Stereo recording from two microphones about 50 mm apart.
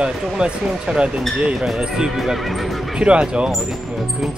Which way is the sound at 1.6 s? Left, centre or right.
Centre.